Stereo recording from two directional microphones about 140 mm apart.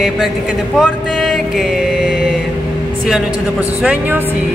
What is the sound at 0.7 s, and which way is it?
Mantra, centre (ahead or behind).